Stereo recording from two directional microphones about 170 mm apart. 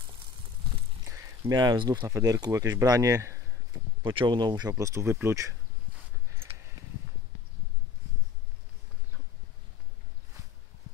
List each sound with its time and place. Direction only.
1.4 s speech: 25° right (ahead or behind)
4.0 s speech: 30° right (ahead or behind)